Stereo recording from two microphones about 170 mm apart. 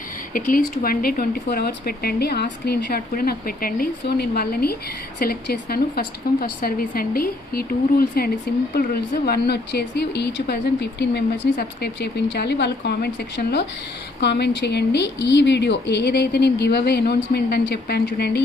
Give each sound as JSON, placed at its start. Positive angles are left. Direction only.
{"t": 0.3, "sound": "a woman's voice", "side_deg": 55}